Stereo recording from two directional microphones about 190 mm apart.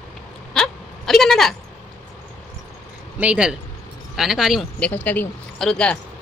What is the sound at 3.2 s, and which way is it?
A woman's voice, 5° right (ahead or behind).